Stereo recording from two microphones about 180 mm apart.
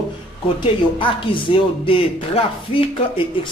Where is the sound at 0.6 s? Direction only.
30° left (ahead or behind).